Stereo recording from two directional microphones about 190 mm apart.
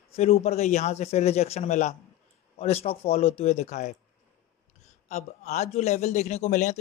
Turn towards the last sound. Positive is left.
turn(degrees=40)  # may be behind; listen again after turning